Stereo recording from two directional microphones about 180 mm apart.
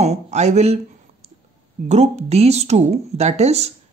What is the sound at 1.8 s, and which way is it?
Speech, 40° right (ahead or behind).